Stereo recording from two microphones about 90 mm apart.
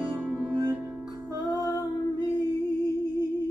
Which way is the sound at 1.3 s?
40° left (ahead or behind).